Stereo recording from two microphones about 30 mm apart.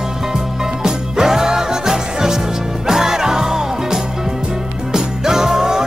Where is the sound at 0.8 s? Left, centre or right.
Centre.